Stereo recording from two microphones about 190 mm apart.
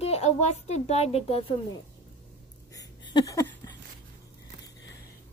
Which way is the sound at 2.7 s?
20° left (ahead or behind).